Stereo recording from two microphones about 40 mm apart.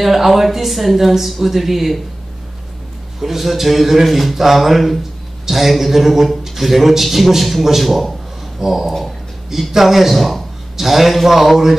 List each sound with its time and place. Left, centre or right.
0.0 s a man's voice: centre
3.2 s a man's voice: centre
9.5 s a man's voice: centre